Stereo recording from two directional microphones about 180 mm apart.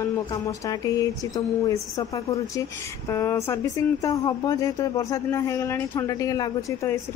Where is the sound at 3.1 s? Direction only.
15° left (ahead or behind).